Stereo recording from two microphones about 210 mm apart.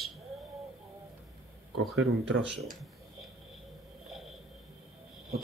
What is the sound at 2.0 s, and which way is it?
Speech, 75° right (ahead or behind).